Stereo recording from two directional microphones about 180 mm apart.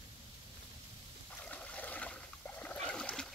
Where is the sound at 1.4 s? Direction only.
10° left (ahead or behind).